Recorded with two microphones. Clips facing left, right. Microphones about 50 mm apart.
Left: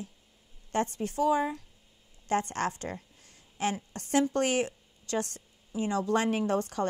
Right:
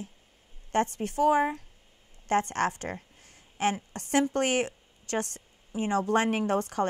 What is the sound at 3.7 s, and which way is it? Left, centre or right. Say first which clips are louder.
A woman's voice: right 1 dB; right.